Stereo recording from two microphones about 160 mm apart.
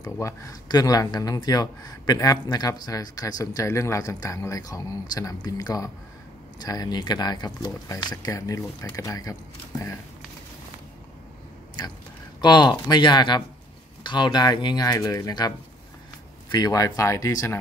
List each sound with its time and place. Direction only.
0.0 s speech: 20° left (ahead or behind)
12.4 s speech: 25° left (ahead or behind)
16.5 s speech: 20° left (ahead or behind)